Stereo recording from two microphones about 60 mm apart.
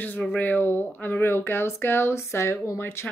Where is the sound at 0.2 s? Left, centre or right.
Left.